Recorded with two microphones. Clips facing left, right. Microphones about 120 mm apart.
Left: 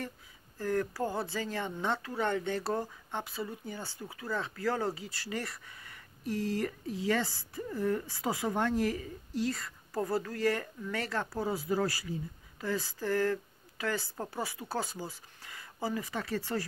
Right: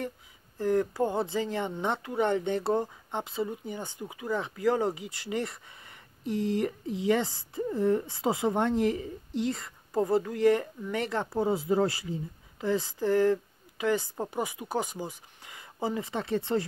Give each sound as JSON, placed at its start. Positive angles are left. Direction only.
{"t": 0.6, "sound": "speech", "side_deg": -20}